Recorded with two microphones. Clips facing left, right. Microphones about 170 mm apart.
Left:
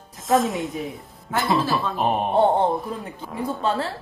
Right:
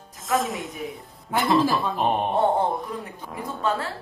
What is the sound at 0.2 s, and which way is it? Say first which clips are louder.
Speech: left 5 dB; centre (ahead or behind).